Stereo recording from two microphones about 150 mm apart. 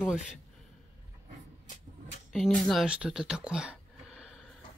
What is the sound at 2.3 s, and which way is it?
Speech, centre (ahead or behind).